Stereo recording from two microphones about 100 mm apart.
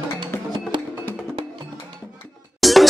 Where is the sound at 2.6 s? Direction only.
Centre (ahead or behind).